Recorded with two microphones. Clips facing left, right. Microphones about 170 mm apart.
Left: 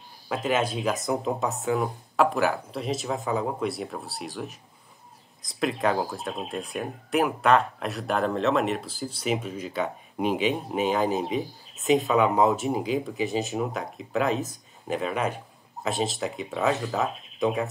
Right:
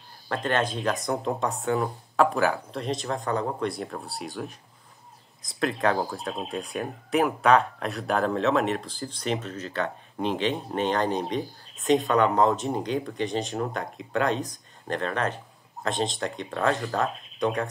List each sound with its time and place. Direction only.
0.3 s speech: 5° left (ahead or behind)